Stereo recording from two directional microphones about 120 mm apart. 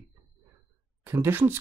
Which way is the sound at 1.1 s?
20° right (ahead or behind).